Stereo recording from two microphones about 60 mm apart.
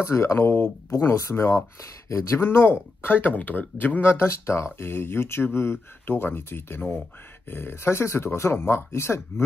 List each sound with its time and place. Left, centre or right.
0.0 s speech: left